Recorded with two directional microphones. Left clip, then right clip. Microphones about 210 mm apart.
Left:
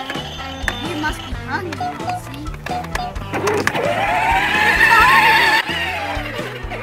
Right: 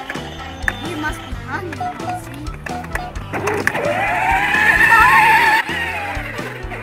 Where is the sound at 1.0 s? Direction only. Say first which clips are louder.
Left 1 dB; centre (ahead or behind).